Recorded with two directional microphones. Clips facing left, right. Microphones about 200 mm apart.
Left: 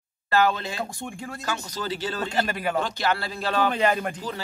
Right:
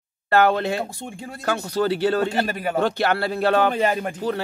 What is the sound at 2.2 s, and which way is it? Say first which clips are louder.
Speech: right 3 dB; 5° right (ahead or behind).